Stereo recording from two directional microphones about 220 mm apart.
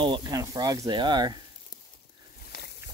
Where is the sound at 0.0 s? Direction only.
20° right (ahead or behind).